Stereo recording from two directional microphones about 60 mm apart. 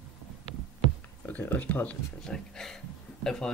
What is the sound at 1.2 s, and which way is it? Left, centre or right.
Speech, left.